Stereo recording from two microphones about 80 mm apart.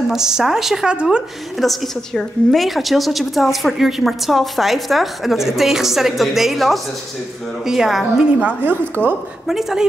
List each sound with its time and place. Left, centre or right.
0.1 s speech: centre
1.6 s a woman's voice: centre
8.4 s a woman's voice: right
9.5 s a woman's voice: centre